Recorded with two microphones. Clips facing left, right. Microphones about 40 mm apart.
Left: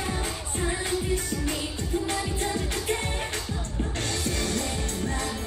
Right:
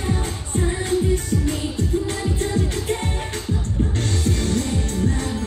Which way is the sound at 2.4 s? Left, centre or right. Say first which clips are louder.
Right 5 dB; centre.